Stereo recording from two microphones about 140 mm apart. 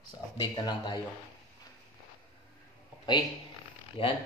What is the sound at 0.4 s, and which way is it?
Speech, 35° left (ahead or behind).